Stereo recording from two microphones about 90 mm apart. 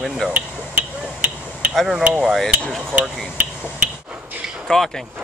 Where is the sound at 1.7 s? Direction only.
5° right (ahead or behind).